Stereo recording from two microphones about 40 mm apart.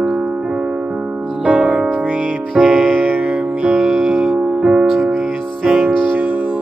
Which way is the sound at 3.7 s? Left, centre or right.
Centre.